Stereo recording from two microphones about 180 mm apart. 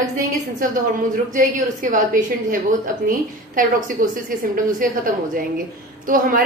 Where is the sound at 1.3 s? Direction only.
45° right (ahead or behind).